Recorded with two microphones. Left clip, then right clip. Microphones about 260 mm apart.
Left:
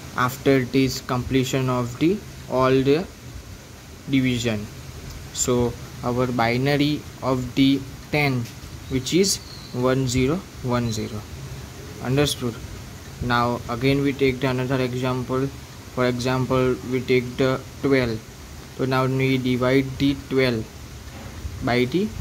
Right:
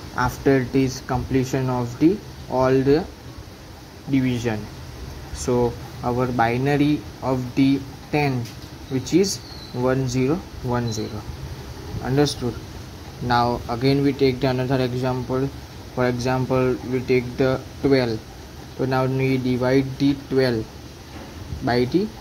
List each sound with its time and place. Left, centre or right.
0.1 s speech: centre
4.1 s speech: centre
12.4 s a man's voice: centre
21.6 s speech: centre